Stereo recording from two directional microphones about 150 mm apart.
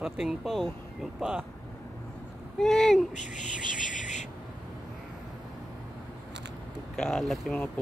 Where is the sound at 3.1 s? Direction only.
55° left (ahead or behind).